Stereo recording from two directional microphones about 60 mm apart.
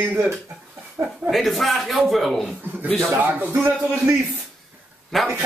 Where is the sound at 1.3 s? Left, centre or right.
Centre.